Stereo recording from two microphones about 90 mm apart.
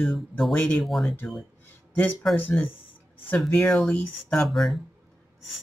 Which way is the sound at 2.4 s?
20° left (ahead or behind).